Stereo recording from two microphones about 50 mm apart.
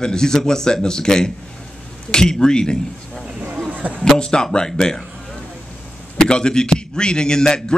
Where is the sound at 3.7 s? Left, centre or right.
Right.